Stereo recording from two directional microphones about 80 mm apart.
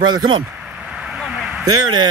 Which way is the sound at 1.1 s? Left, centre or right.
Centre.